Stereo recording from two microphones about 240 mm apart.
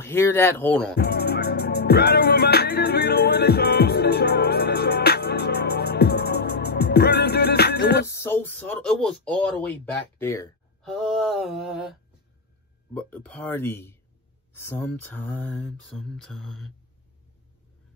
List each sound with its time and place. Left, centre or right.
0.0 s speech: centre
0.9 s music: left
8.1 s speech: centre